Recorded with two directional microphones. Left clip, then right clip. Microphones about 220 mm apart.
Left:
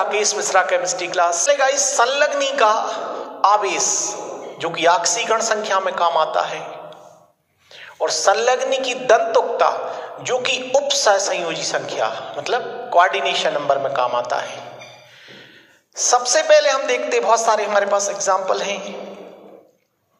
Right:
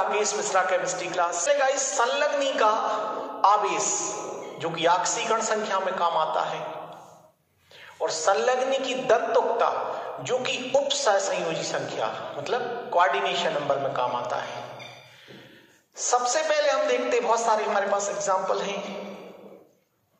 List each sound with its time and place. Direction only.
0.1 s a man's voice: 45° left (ahead or behind)
8.0 s a man's voice: 45° left (ahead or behind)
16.0 s a man's voice: 45° left (ahead or behind)